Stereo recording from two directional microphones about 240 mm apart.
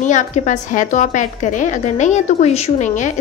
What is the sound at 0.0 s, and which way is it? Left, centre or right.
A woman's voice, left.